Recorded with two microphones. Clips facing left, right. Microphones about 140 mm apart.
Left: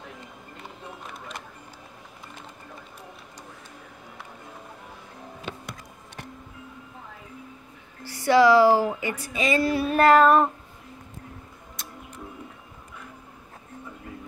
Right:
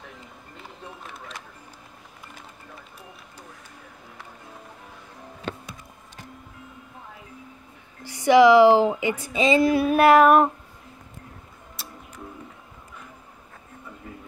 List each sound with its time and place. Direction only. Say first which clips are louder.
8.0 s speech: right 3 dB; 15° right (ahead or behind)